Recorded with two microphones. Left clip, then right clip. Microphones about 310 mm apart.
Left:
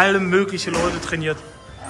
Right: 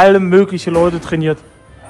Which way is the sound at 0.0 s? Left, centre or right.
Centre.